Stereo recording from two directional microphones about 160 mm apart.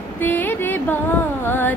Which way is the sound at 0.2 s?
10° left (ahead or behind).